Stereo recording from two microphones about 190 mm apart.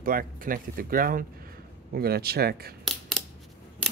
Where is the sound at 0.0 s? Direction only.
50° right (ahead or behind).